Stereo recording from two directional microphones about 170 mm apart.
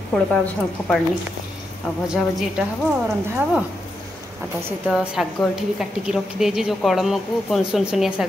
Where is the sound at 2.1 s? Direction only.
5° right (ahead or behind).